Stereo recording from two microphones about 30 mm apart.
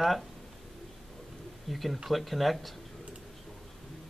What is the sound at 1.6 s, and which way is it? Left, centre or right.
Speech, centre.